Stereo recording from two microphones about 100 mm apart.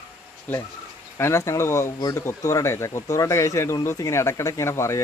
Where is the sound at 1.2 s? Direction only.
25° left (ahead or behind).